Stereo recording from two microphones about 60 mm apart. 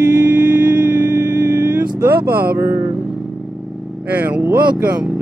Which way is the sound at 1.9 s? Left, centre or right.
Right.